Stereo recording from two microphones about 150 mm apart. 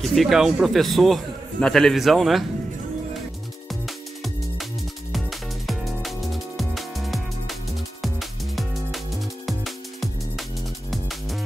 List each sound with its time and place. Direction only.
0.0 s a man's voice: centre (ahead or behind)
5.7 s music: centre (ahead or behind)